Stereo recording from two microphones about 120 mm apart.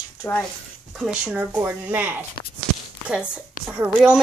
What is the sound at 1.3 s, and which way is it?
Speech, 15° right (ahead or behind).